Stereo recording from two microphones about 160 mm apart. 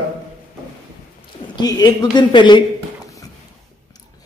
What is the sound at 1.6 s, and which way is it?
A man's voice, 25° left (ahead or behind).